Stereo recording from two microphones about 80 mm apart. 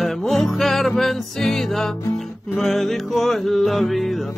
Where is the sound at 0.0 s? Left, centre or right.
Centre.